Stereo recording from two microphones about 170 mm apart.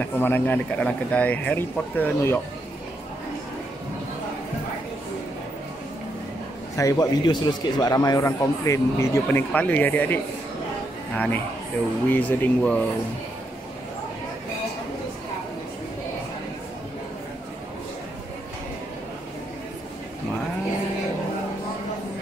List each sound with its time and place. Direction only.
0.0 s a man's voice: 10° left (ahead or behind)
6.8 s a man's voice: 20° left (ahead or behind)